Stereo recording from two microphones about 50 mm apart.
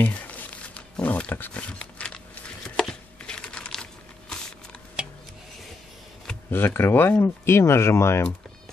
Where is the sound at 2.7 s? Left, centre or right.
Centre.